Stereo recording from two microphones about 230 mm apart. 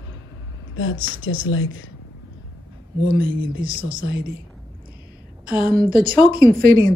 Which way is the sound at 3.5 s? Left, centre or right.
Right.